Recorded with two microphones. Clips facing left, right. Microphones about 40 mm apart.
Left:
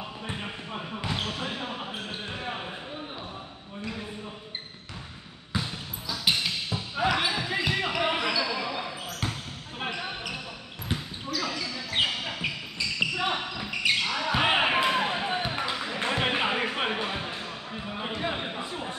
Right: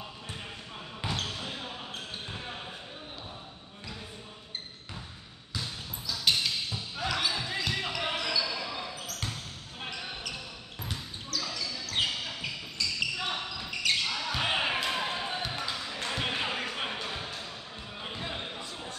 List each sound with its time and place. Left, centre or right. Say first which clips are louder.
0.3 s basketball bounce: left 8 dB; left
5.5 s basketball bounce: left 5 dB; left